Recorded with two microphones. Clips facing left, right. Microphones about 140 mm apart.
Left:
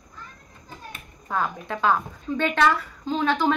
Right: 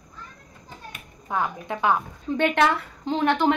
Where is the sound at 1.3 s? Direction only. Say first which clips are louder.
Even; 20° right (ahead or behind).